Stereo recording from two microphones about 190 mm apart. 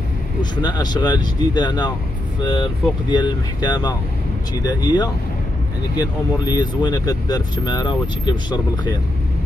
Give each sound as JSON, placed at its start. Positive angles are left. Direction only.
{"t": 0.4, "sound": "speech", "side_deg": 20}